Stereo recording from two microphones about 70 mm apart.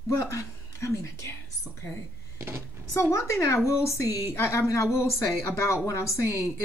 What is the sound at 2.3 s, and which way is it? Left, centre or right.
Speech, right.